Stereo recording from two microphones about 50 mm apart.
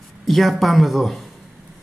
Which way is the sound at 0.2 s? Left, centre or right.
Centre.